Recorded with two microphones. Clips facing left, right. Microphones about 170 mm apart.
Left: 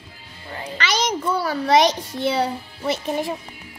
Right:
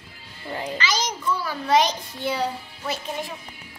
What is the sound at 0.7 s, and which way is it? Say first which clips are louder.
A child's voice: left 7 dB; 70° left (ahead or behind).